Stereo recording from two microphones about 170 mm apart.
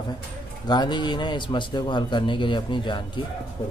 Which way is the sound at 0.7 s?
25° left (ahead or behind).